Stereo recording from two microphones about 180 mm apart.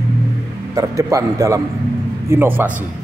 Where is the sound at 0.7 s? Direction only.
20° right (ahead or behind).